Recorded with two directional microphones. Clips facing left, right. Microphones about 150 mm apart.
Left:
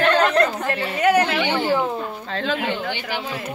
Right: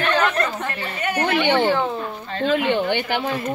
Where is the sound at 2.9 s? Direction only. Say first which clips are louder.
Right 5 dB; 55° right (ahead or behind).